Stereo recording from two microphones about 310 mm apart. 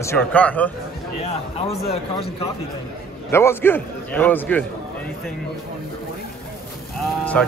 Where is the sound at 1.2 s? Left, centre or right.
Centre.